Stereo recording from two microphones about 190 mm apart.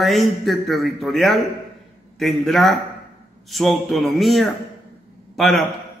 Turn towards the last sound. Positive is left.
turn(degrees=0)  # may be behind; listen again after turning